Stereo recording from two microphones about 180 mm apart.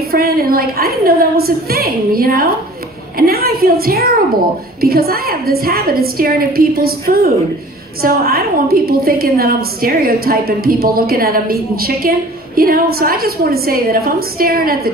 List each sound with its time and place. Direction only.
0.1 s a woman's voice: 55° right (ahead or behind)